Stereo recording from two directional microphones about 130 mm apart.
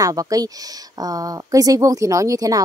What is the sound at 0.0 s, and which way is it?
Speech, 25° right (ahead or behind).